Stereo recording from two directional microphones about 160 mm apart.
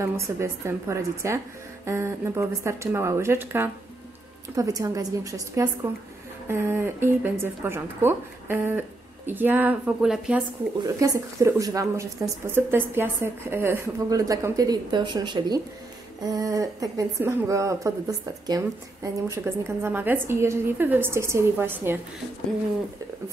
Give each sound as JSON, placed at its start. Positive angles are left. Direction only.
{"t": 0.0, "sound": "a woman's voice", "side_deg": -15}
{"t": 11.0, "sound": "a woman's voice", "side_deg": -20}